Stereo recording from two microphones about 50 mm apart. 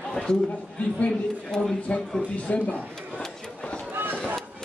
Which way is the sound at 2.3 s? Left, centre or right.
Left.